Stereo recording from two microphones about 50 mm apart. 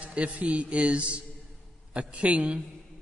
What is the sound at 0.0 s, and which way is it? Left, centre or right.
A man's voice, right.